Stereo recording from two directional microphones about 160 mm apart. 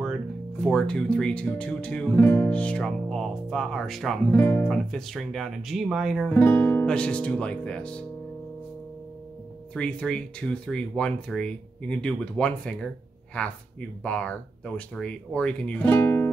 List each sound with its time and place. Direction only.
0.7 s speech: 5° left (ahead or behind)
4.3 s speech: 15° left (ahead or behind)
6.3 s speech: 15° left (ahead or behind)
9.8 s speech: 5° left (ahead or behind)